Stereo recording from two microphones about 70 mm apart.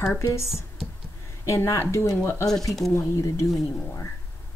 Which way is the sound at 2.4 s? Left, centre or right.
Centre.